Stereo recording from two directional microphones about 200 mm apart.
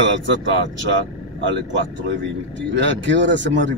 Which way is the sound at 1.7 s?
65° right (ahead or behind).